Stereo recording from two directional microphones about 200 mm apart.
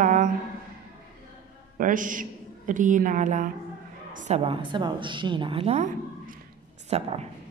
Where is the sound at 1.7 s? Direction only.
40° right (ahead or behind).